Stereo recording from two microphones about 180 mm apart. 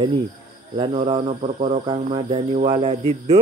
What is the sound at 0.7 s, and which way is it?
Mantra, 35° right (ahead or behind).